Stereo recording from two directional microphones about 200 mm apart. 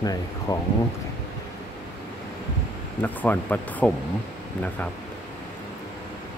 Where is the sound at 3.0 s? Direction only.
10° left (ahead or behind).